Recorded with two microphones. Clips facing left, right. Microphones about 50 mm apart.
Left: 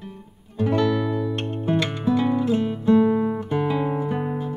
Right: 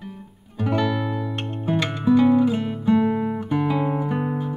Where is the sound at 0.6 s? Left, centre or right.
Centre.